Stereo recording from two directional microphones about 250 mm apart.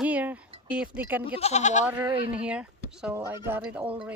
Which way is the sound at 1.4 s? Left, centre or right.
Left.